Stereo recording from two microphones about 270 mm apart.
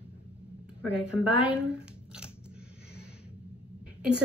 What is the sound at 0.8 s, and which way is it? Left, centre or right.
Speech, centre.